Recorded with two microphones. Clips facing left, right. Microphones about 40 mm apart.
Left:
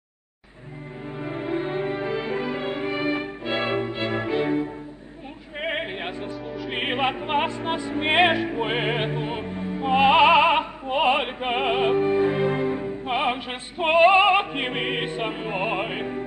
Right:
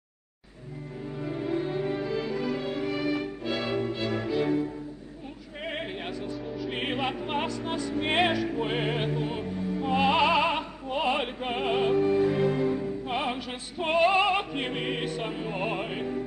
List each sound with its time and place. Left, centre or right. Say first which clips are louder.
1.2 s music: left 2 dB; left